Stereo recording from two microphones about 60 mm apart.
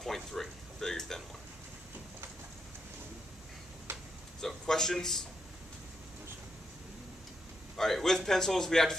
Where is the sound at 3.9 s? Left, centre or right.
Right.